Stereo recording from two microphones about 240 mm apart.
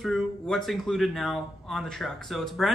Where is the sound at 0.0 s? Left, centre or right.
Centre.